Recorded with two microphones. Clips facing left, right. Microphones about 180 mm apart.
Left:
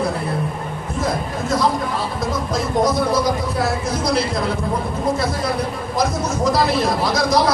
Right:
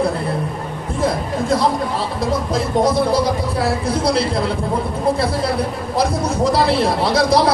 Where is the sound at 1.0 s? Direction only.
30° right (ahead or behind).